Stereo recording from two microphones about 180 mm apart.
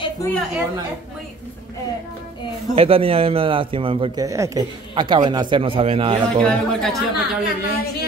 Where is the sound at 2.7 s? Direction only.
30° right (ahead or behind).